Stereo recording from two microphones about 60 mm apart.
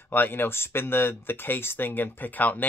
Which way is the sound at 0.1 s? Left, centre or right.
Left.